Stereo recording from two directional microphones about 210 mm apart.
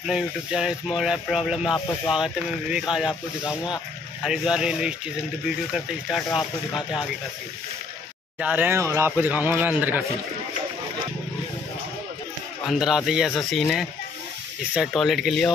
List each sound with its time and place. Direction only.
0.0 s speech: 5° right (ahead or behind)
6.0 s speech: centre (ahead or behind)
8.4 s speech: 10° right (ahead or behind)
12.6 s speech: centre (ahead or behind)
14.9 s speech: centre (ahead or behind)